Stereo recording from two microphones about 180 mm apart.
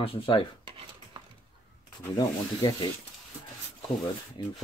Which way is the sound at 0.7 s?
25° right (ahead or behind).